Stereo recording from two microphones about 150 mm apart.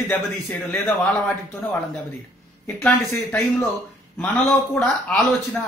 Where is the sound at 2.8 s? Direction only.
15° left (ahead or behind).